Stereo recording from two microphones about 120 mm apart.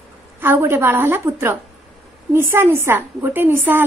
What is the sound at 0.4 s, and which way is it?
A woman's voice, 20° right (ahead or behind).